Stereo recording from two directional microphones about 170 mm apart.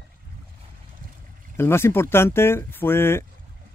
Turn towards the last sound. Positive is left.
turn(degrees=15)  # may be behind; listen again after turning